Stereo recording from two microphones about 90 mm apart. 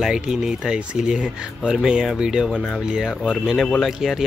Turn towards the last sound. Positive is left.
turn(degrees=10)  # may be behind; listen again after turning